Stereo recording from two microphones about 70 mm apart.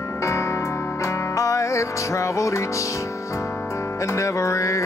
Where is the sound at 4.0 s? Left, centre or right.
Left.